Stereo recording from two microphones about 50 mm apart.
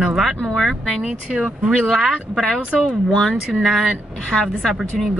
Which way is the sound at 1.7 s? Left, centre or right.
Centre.